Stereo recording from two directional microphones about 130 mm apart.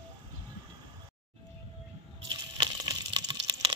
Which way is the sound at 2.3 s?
35° right (ahead or behind).